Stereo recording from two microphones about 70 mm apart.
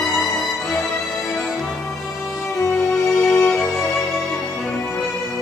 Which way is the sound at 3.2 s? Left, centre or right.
Left.